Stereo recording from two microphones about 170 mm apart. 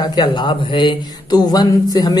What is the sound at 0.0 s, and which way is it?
Speech, 25° left (ahead or behind).